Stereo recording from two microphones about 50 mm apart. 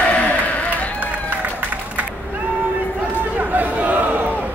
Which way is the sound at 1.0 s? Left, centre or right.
Right.